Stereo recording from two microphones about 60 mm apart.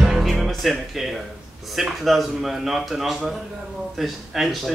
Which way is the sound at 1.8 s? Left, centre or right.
Centre.